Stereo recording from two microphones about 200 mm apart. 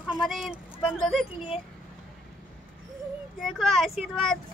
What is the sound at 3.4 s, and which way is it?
Speech, centre (ahead or behind).